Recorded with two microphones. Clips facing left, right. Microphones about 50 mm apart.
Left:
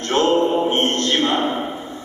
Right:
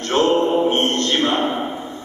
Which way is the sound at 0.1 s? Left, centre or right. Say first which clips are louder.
Even; centre.